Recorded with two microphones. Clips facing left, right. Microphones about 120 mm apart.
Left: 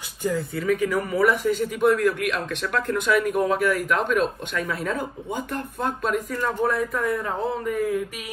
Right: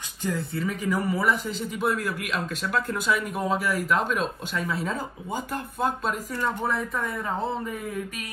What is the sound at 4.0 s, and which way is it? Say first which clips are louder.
Speech: left 5 dB; 55° left (ahead or behind).